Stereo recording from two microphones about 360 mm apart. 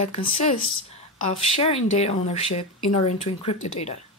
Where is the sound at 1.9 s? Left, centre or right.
Centre.